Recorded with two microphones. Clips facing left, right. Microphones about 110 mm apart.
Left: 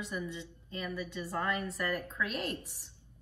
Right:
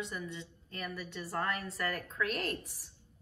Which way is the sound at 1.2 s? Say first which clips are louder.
Left 1 dB; 20° left (ahead or behind).